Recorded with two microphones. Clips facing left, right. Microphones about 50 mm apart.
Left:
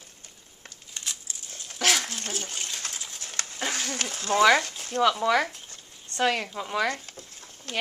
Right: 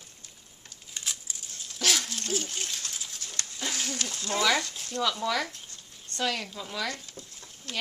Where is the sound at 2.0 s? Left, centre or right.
Left.